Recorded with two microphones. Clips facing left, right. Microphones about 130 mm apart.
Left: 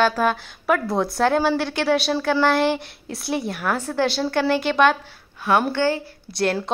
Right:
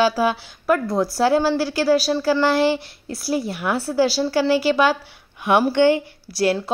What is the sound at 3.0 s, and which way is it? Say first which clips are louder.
A woman's voice: right 3 dB; centre (ahead or behind).